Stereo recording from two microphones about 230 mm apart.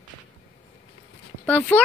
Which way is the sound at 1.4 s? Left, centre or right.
Centre.